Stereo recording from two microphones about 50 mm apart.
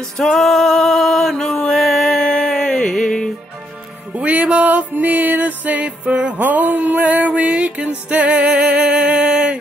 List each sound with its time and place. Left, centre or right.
0.2 s music: centre
1.3 s a sound: centre
4.2 s music: right
5.9 s music: right
6.3 s music: right; by 9.5 s centre